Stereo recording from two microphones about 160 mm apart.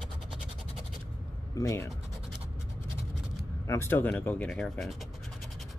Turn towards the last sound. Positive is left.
turn(degrees=0)  # may be behind; listen again after turning